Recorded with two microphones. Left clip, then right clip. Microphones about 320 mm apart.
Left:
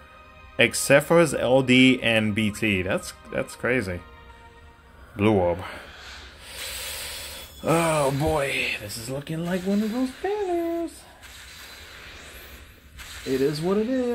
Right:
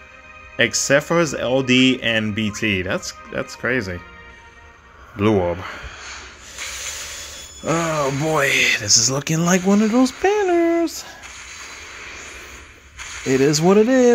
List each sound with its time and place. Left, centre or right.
0.6 s speech: centre
5.1 s snake: centre
7.6 s speech: centre
8.3 s speech: centre
9.8 s speech: centre
10.3 s a sound: centre
13.4 s speech: right